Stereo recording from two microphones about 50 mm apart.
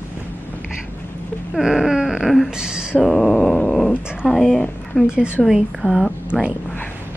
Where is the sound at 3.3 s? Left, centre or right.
Left.